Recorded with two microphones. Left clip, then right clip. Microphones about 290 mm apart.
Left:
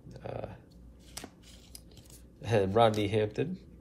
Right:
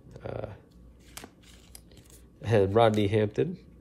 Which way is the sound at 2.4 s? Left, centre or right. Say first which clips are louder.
Right 3 dB; right.